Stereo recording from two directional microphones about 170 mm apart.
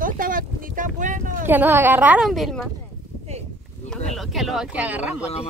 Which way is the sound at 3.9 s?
Centre (ahead or behind).